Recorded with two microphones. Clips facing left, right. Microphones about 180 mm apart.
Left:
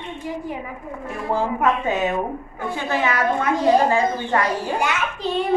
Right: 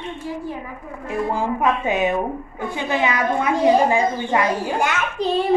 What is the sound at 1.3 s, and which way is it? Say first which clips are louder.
A woman's voice: left 2 dB; 15° right (ahead or behind).